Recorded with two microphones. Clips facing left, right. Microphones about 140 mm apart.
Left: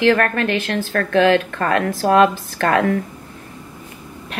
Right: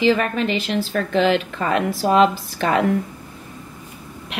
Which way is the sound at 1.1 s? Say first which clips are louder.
Left 4 dB; 65° left (ahead or behind).